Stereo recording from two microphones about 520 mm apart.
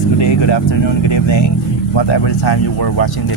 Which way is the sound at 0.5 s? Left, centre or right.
Left.